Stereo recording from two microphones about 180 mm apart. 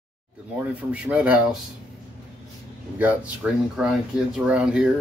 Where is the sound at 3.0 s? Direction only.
10° right (ahead or behind).